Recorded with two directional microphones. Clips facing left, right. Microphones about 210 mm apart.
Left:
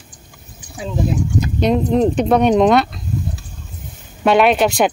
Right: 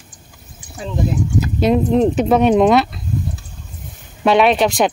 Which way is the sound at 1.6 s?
5° right (ahead or behind).